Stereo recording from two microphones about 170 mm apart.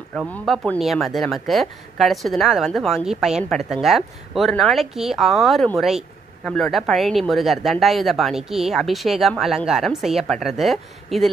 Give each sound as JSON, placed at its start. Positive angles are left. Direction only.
{"t": 0.3, "sound": "speech", "side_deg": 10}